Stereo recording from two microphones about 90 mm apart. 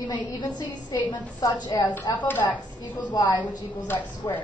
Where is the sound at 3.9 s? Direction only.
20° left (ahead or behind).